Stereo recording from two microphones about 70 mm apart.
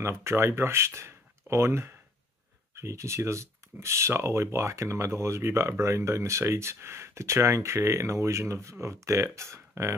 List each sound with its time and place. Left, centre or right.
0.0 s speech: right